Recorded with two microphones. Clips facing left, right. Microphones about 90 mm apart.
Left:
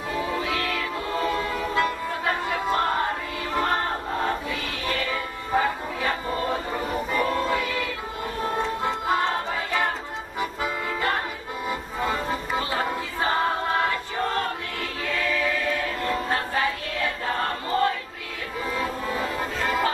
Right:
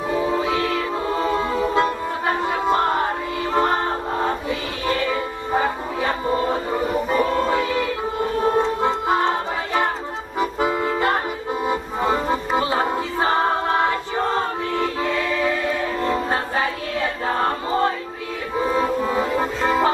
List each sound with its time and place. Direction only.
0.1 s music: 25° right (ahead or behind)